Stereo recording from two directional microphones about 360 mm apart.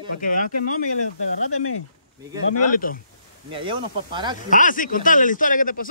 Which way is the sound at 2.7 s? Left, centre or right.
Left.